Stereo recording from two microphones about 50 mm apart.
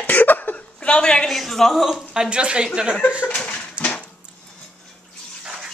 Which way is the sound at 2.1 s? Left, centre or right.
Right.